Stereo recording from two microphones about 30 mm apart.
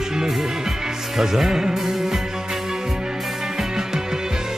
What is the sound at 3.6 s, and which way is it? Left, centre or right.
Music, centre.